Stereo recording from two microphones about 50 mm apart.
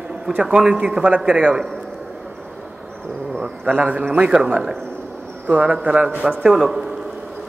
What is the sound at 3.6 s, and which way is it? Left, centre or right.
Speech, right.